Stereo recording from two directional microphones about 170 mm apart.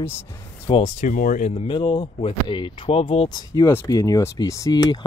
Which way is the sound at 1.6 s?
30° left (ahead or behind).